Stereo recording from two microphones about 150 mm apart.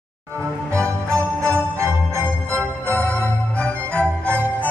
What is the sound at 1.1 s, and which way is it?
Music, 10° left (ahead or behind).